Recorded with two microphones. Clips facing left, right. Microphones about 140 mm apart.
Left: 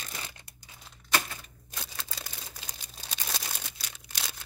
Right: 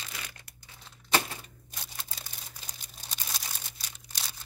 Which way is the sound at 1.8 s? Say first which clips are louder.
Left 3 dB; 90° left.